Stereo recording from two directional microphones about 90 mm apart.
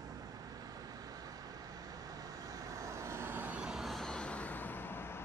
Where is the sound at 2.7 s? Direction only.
35° right (ahead or behind).